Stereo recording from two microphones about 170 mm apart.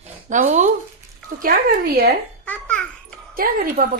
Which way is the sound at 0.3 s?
45° right (ahead or behind).